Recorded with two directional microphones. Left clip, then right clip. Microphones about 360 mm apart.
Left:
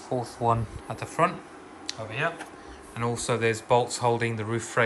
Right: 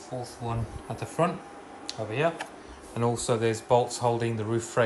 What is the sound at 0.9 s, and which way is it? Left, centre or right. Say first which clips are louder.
Speech: left 2 dB; centre.